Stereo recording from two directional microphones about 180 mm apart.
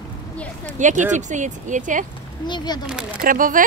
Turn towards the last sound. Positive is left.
turn(degrees=-50)  # may be behind; listen again after turning